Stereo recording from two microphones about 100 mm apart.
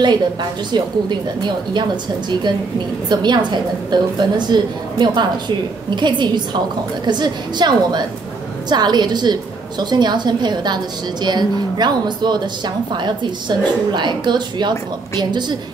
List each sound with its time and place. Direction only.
0.0 s a woman's voice: 50° right (ahead or behind)